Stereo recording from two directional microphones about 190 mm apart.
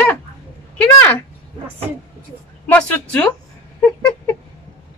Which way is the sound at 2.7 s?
5° left (ahead or behind).